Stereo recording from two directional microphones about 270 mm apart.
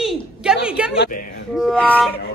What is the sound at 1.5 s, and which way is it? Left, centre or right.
Music, centre.